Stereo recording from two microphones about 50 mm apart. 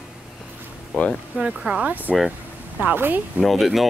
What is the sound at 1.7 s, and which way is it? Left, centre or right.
Speech, right.